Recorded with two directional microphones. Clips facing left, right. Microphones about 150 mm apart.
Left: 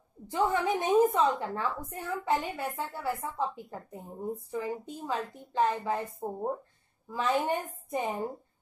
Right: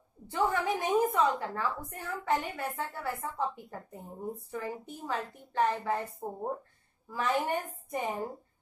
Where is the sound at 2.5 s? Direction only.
10° left (ahead or behind).